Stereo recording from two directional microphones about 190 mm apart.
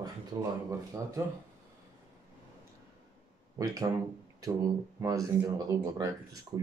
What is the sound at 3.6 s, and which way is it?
Speech, 20° right (ahead or behind).